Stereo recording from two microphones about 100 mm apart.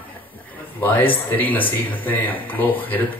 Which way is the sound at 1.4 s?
15° left (ahead or behind).